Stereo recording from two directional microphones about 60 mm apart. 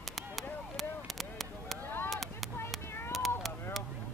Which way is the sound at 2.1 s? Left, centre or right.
Centre.